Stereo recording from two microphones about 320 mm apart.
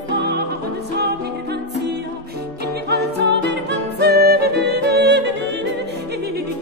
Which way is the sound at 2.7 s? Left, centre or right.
Right.